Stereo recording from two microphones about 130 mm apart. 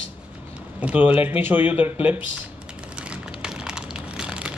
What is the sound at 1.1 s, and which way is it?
Speech, 45° left (ahead or behind).